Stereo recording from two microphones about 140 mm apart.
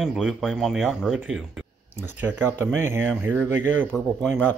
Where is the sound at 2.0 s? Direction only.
15° right (ahead or behind).